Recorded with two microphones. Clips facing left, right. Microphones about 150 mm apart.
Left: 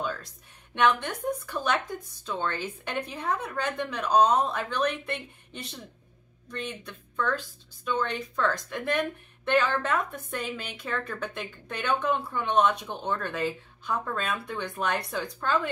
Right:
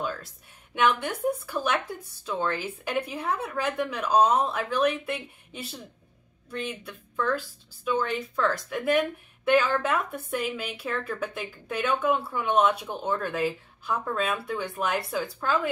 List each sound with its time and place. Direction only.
0.7 s a woman's voice: 5° right (ahead or behind)